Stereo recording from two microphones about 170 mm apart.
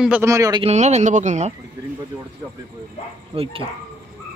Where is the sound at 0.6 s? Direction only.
40° right (ahead or behind).